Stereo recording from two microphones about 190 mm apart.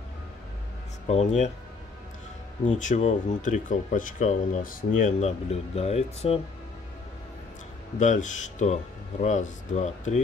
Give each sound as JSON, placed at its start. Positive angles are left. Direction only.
{"t": 1.0, "sound": "speech", "side_deg": 35}
{"t": 2.6, "sound": "speech", "side_deg": 40}
{"t": 8.0, "sound": "speech", "side_deg": 40}